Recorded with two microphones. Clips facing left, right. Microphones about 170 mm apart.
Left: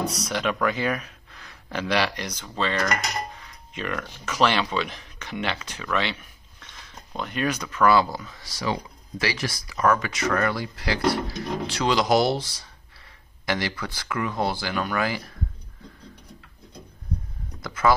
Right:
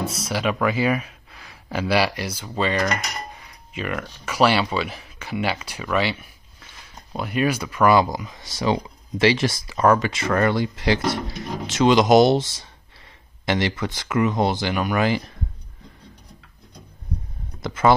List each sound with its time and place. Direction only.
0.3 s speech: 5° right (ahead or behind)
17.6 s speech: 25° right (ahead or behind)